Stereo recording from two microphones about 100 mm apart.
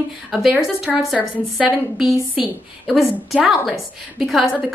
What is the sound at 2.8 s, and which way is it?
A woman's voice, centre (ahead or behind).